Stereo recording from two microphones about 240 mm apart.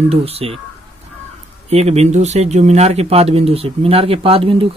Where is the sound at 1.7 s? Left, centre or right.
Right.